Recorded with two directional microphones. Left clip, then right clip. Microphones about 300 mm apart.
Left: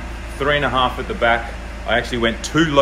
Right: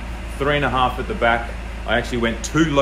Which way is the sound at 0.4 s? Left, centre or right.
Centre.